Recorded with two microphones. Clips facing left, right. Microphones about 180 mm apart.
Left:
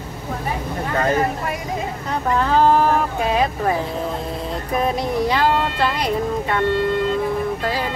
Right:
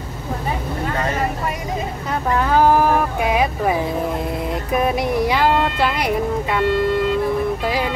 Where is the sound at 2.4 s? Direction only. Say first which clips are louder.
Right 1 dB; 10° right (ahead or behind).